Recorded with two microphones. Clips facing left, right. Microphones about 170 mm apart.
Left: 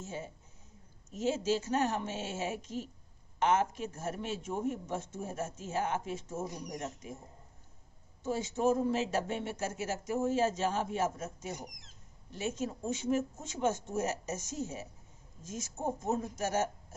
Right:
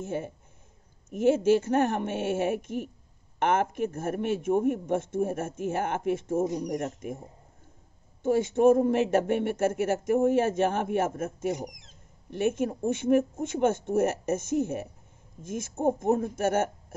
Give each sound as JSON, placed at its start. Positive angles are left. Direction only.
{"t": 0.0, "sound": "a man's voice", "side_deg": -55}
{"t": 8.2, "sound": "a man's voice", "side_deg": -55}